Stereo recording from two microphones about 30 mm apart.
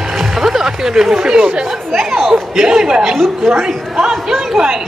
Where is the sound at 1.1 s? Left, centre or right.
Right.